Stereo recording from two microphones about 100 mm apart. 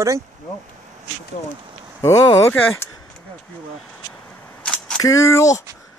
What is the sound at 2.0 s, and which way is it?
Speech, 35° left (ahead or behind).